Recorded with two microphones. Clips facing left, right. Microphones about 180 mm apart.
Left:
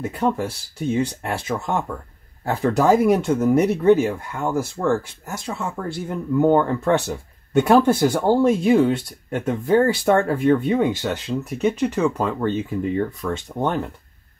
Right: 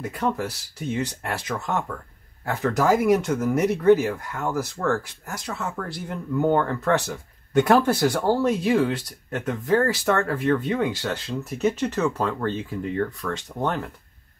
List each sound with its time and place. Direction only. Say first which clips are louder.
0.1 s speech: left 3 dB; 25° left (ahead or behind)